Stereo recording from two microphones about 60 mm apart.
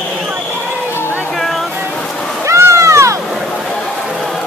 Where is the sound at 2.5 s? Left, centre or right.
Right.